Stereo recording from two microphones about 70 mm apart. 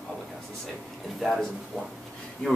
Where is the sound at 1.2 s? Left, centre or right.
Centre.